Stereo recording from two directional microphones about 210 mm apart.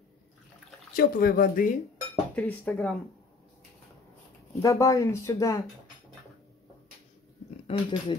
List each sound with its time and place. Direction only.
0.9 s speech: 45° left (ahead or behind)
2.3 s speech: 5° left (ahead or behind)
4.6 s speech: 15° left (ahead or behind)
7.6 s speech: 25° left (ahead or behind)